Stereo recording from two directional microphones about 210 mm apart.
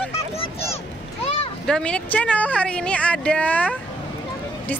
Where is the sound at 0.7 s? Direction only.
30° left (ahead or behind).